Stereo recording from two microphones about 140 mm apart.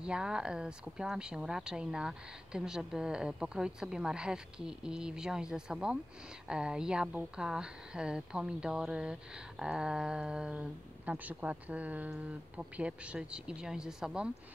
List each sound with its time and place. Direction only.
0.0 s a woman's voice: 5° right (ahead or behind)